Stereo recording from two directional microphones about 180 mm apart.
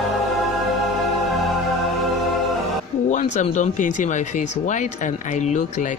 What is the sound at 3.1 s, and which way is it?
Speech, 45° left (ahead or behind).